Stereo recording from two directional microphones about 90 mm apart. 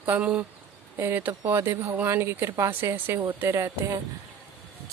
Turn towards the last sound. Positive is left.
turn(degrees=-35)  # may be behind; listen again after turning